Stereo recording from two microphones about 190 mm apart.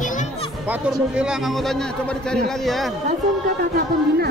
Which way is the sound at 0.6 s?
5° right (ahead or behind).